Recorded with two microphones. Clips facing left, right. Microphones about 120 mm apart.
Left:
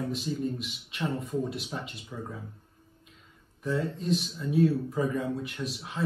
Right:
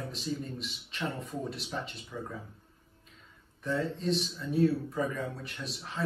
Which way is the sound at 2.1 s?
20° left (ahead or behind).